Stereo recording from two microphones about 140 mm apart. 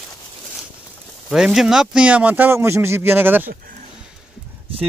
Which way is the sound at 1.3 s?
5° right (ahead or behind).